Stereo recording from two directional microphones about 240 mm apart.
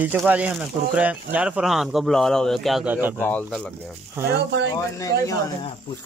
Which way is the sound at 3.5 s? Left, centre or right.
Centre.